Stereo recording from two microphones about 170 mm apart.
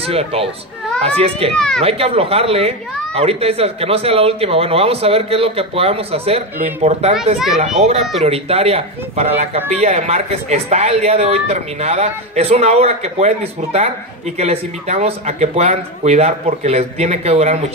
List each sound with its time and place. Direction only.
0.0 s speech: 35° right (ahead or behind)
1.5 s speech: 5° left (ahead or behind)
1.8 s speech: 35° right (ahead or behind)
8.2 s speech: 35° right (ahead or behind)